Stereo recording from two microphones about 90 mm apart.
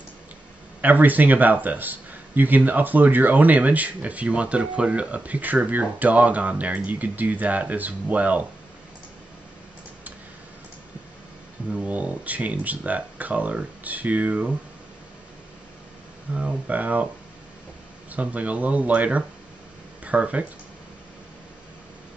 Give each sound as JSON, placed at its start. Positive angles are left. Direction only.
{"t": 0.7, "sound": "speech", "side_deg": -20}
{"t": 11.7, "sound": "speech", "side_deg": -15}
{"t": 16.3, "sound": "speech", "side_deg": -15}
{"t": 18.1, "sound": "speech", "side_deg": -15}